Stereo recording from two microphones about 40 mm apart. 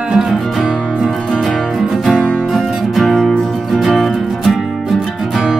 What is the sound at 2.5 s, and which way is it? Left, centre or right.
Music, centre.